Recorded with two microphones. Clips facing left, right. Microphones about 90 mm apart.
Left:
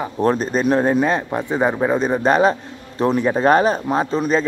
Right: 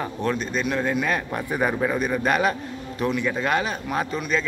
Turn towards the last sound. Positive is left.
turn(degrees=35)  # may be behind; listen again after turning